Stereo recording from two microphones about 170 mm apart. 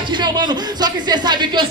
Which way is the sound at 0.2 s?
25° right (ahead or behind).